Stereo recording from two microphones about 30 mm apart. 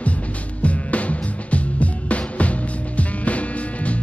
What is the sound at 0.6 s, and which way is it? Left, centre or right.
Music, left.